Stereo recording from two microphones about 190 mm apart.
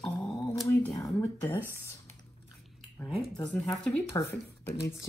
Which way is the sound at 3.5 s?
5° left (ahead or behind).